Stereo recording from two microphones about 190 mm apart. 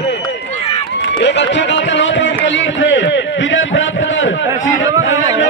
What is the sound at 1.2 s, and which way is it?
A man's voice, 70° left (ahead or behind).